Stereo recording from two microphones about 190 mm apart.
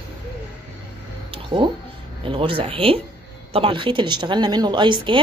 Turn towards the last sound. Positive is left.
turn(degrees=-25)  # may be behind; listen again after turning